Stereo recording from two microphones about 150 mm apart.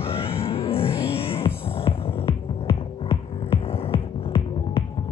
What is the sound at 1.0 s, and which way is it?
Music, 40° left (ahead or behind).